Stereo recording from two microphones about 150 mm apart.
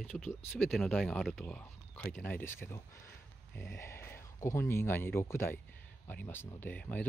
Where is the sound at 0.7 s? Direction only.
Centre (ahead or behind).